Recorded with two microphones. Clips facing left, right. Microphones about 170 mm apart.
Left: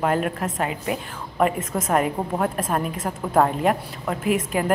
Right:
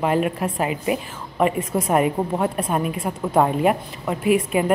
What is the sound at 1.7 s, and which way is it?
A woman's voice, centre (ahead or behind).